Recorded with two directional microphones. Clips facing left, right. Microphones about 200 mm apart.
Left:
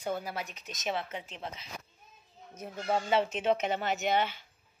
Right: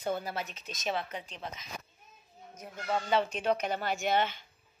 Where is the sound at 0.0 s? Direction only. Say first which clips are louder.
Right 1 dB; 10° left (ahead or behind).